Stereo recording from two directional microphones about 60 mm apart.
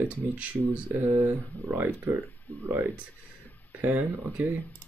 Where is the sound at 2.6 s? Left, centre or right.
Right.